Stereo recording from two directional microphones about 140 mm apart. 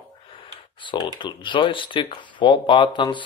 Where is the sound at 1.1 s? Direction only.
35° left (ahead or behind).